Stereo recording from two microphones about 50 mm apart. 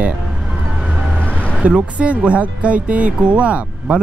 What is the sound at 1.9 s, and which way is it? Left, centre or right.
Speech, right.